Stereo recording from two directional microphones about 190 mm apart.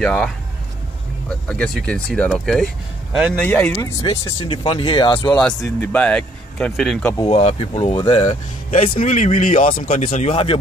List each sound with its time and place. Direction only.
0.0 s speech: 5° left (ahead or behind)
1.5 s speech: 5° left (ahead or behind)
3.4 s speech: 10° left (ahead or behind)
3.8 s speech: 20° left (ahead or behind)
5.3 s speech: 5° left (ahead or behind)
7.2 s speech: 35° left (ahead or behind)